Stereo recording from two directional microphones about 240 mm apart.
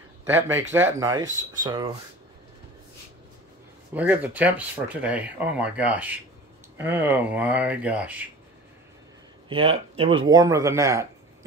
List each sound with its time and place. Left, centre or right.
0.2 s speech: centre
3.9 s speech: centre
9.5 s speech: right